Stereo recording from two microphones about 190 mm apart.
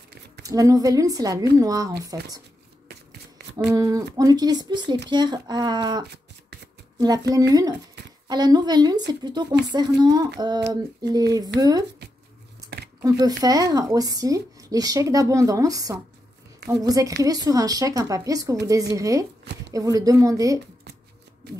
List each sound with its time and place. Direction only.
0.4 s speech: 20° right (ahead or behind)
3.5 s speech: 20° right (ahead or behind)
12.6 s a sound: 60° right (ahead or behind)
13.0 s a woman's voice: 20° right (ahead or behind)